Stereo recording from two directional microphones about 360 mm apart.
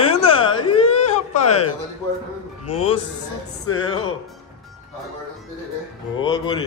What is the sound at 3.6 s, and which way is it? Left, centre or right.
Music, left.